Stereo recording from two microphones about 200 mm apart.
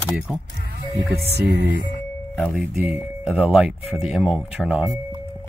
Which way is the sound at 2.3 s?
Centre (ahead or behind).